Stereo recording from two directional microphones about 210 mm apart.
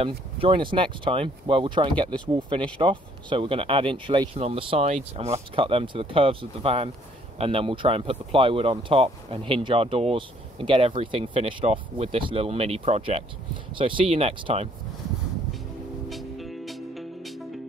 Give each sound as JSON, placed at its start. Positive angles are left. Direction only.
{"t": 0.4, "sound": "speech", "side_deg": -25}
{"t": 16.1, "sound": "music", "side_deg": 0}